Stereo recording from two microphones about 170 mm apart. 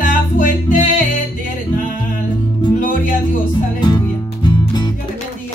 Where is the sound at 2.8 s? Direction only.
55° left (ahead or behind).